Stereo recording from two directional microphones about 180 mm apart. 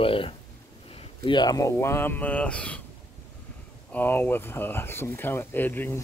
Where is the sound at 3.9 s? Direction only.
10° left (ahead or behind).